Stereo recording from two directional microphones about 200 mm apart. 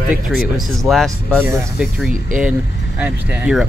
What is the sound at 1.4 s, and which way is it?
Speech, 10° right (ahead or behind).